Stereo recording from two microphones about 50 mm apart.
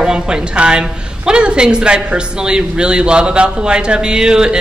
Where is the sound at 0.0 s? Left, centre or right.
Centre.